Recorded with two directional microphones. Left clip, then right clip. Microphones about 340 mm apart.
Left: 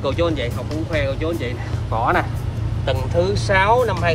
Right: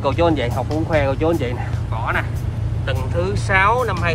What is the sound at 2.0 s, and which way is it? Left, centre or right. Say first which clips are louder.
Speech: left 3 dB; centre.